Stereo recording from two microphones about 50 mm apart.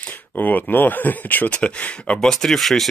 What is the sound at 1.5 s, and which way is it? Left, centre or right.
Speech, left.